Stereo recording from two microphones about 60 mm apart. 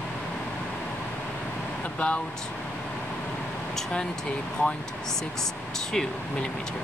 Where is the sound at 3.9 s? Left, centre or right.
Centre.